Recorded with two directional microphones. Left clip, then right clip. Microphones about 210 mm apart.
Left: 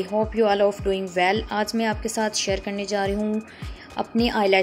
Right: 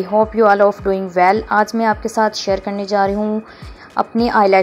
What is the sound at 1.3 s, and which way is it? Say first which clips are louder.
A woman's voice: right 9 dB; 10° left (ahead or behind).